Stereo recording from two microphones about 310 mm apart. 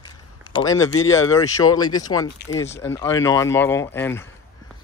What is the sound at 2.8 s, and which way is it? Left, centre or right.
Speech, centre.